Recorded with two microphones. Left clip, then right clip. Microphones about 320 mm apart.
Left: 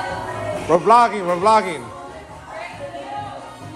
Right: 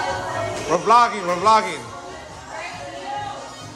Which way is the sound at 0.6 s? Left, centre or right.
Centre.